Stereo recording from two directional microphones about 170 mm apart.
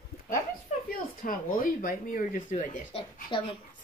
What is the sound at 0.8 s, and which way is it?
Speech, 55° left (ahead or behind).